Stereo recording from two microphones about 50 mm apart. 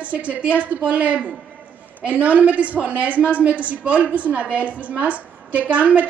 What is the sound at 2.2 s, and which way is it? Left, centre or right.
A woman's voice, right.